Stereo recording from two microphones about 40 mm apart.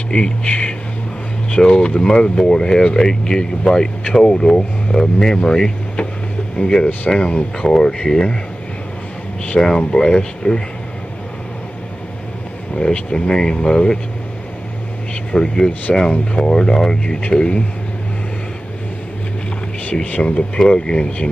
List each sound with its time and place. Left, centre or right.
0.1 s speech: left
9.6 s speech: centre
12.7 s speech: left
15.3 s speech: centre
19.9 s speech: left